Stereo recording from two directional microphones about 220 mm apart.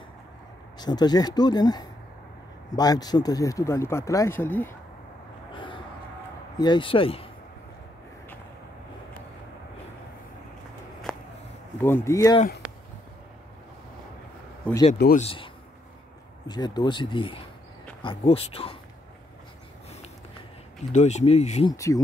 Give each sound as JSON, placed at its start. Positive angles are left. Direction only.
{"t": 0.7, "sound": "speech", "side_deg": 20}
{"t": 5.5, "sound": "a sound", "side_deg": 20}
{"t": 6.6, "sound": "speech", "side_deg": 20}
{"t": 11.1, "sound": "a sound", "side_deg": 0}
{"t": 11.8, "sound": "speech", "side_deg": 10}
{"t": 14.7, "sound": "speech", "side_deg": 5}
{"t": 15.1, "sound": "speech", "side_deg": 25}
{"t": 20.9, "sound": "speech", "side_deg": 30}
{"t": 21.7, "sound": "speech", "side_deg": 15}